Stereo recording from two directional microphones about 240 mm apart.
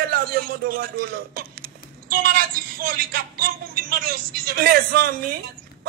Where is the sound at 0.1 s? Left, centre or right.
Right.